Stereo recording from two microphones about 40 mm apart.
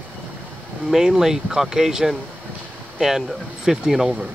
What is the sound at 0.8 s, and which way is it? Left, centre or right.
Speech, centre.